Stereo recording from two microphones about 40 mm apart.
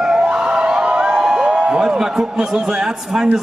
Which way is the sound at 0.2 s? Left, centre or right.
Right.